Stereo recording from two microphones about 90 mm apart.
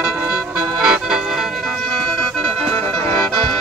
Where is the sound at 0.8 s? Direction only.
5° right (ahead or behind).